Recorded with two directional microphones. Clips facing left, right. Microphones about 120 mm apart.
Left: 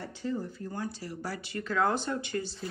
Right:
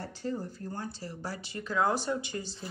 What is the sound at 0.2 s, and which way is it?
A woman's voice, 35° right (ahead or behind).